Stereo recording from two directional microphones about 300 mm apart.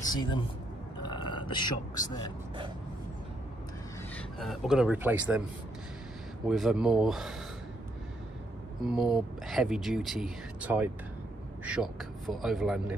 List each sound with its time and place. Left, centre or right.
0.0 s speech: centre
1.0 s a sound: centre
4.4 s speech: centre
6.4 s speech: centre
8.9 s speech: centre